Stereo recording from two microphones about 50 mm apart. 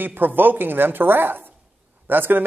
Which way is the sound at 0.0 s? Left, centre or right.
Right.